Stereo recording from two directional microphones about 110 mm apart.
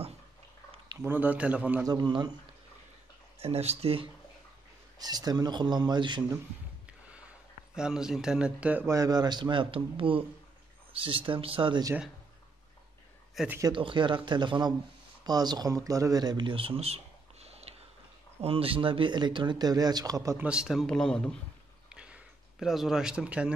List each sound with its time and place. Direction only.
0.9 s a man's voice: 20° right (ahead or behind)
1.9 s speech: 40° right (ahead or behind)
3.3 s speech: 65° right (ahead or behind)
4.9 s speech: 35° right (ahead or behind)
6.9 s a sound: 10° right (ahead or behind)
7.7 s a man's voice: 5° right (ahead or behind)
8.8 s speech: 30° right (ahead or behind); by 11.8 s 50° right (ahead or behind)
13.7 s speech: 45° right (ahead or behind); by 17.7 s 70° right (ahead or behind)
18.4 s speech: 60° right (ahead or behind); by 20.3 s 35° right (ahead or behind)
20.3 s speech: 10° right (ahead or behind); by 21.4 s 5° left (ahead or behind)
21.8 s a sound: 10° right (ahead or behind)